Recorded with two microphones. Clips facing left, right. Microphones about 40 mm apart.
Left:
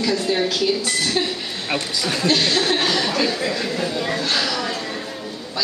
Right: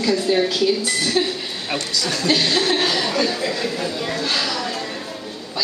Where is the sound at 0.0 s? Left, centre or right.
Centre.